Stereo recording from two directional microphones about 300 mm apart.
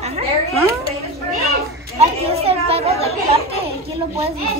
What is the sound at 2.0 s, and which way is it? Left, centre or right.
Chatter, centre.